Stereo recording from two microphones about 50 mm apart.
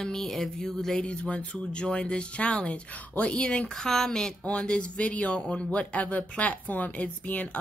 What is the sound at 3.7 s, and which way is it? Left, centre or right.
Speech, centre.